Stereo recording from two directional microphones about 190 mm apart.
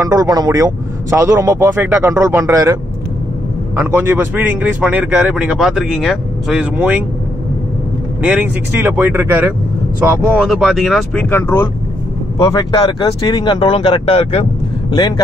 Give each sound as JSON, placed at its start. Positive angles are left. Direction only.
{"t": 0.0, "sound": "speech", "side_deg": -20}
{"t": 8.2, "sound": "speech", "side_deg": -5}
{"t": 11.2, "sound": "speech", "side_deg": 10}
{"t": 12.4, "sound": "speech", "side_deg": 30}